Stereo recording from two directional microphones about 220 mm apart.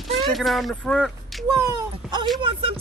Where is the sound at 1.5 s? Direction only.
15° right (ahead or behind).